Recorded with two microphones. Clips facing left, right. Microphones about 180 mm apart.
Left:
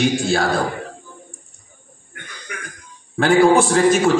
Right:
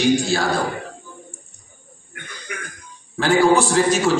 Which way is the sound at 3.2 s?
50° left (ahead or behind).